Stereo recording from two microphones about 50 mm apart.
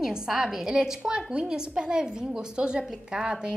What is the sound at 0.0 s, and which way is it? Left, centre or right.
A woman's voice, centre.